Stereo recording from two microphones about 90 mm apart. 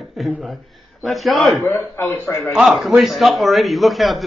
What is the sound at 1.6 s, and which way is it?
Speech, 25° left (ahead or behind).